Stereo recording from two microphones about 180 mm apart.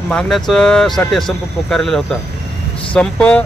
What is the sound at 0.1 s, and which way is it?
Speech, centre (ahead or behind).